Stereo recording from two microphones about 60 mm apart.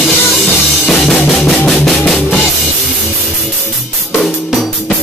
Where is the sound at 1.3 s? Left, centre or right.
Centre.